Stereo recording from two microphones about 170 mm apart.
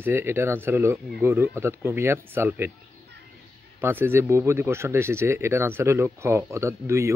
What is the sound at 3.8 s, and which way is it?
Speech, 15° right (ahead or behind).